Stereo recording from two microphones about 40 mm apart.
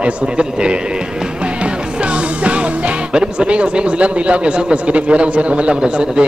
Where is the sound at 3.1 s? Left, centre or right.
Right.